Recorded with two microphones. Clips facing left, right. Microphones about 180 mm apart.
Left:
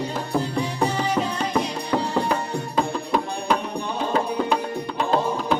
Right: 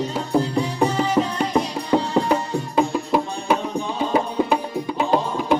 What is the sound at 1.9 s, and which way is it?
Music, 25° right (ahead or behind).